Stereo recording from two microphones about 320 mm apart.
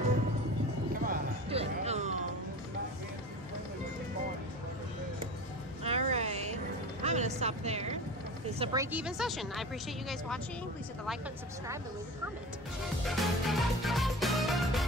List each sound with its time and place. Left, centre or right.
1.0 s music: right
5.9 s music: centre
8.5 s a woman's voice: centre
13.2 s music: centre